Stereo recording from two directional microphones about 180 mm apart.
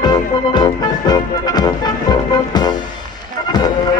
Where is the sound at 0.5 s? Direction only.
25° left (ahead or behind).